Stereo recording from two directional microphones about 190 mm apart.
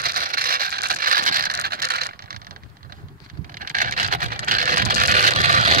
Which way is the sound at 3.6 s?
45° right (ahead or behind).